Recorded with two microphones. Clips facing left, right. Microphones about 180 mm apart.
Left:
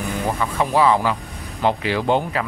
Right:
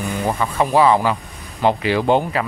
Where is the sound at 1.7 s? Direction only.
15° right (ahead or behind).